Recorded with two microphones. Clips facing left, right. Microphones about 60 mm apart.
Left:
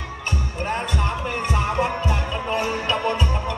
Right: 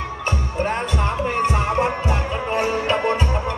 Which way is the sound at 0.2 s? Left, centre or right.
Right.